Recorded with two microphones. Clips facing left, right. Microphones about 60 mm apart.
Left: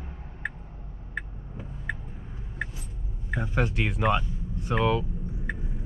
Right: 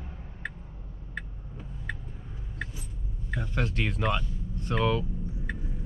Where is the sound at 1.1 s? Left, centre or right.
Centre.